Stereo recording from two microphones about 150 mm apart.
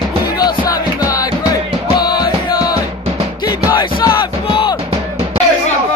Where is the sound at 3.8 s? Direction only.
30° left (ahead or behind).